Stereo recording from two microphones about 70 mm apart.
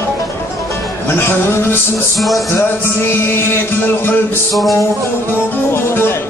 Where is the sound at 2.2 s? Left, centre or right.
Centre.